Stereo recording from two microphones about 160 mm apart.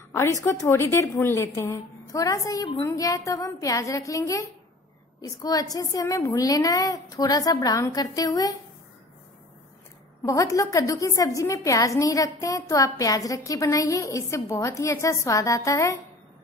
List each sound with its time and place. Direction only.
0.1 s a woman's voice: 15° left (ahead or behind)
10.2 s a woman's voice: 20° left (ahead or behind)